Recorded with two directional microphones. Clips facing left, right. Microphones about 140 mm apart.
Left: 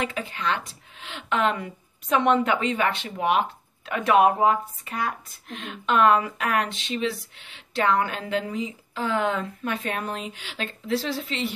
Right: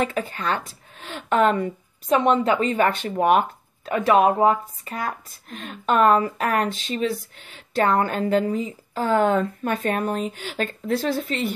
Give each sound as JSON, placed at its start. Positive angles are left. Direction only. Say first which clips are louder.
{"t": 0.0, "sound": "speech", "louder": "right 4 dB", "side_deg": -45}